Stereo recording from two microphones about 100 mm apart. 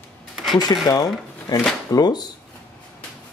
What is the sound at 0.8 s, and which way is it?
Speech, 40° left (ahead or behind).